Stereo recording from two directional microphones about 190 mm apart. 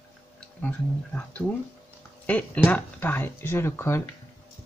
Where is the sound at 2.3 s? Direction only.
10° left (ahead or behind).